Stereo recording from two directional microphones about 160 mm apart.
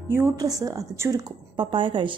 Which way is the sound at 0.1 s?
20° right (ahead or behind).